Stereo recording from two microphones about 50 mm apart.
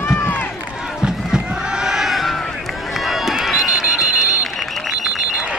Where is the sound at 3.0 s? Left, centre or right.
Centre.